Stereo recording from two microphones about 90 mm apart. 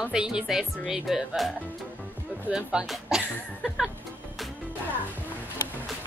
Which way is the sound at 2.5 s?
10° right (ahead or behind).